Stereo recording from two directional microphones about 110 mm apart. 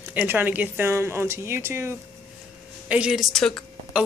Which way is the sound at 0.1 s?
15° right (ahead or behind).